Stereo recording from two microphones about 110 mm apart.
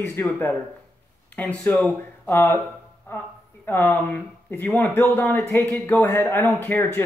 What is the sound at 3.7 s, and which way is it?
Speech, 15° left (ahead or behind).